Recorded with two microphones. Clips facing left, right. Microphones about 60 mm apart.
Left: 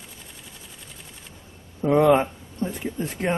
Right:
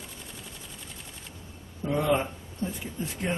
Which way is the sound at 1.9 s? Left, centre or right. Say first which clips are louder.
Left 8 dB; left.